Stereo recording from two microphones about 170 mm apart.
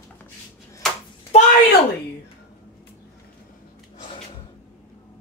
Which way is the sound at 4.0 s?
30° left (ahead or behind).